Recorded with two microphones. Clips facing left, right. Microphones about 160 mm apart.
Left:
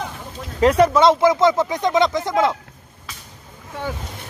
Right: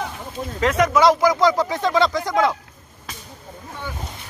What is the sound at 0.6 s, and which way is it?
Speech, 30° left (ahead or behind).